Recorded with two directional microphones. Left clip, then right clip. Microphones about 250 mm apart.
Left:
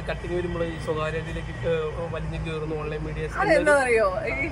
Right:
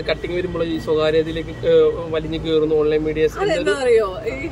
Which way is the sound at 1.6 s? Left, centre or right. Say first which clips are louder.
Right 12 dB; right.